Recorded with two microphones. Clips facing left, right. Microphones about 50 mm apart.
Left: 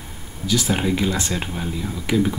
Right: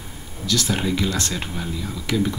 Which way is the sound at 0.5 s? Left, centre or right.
Centre.